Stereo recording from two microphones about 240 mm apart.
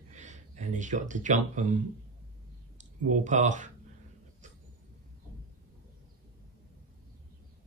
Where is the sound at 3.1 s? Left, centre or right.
Right.